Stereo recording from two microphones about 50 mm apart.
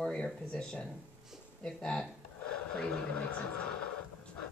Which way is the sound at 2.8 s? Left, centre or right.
Left.